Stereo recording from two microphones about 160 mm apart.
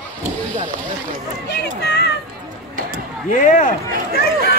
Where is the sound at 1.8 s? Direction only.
90° left.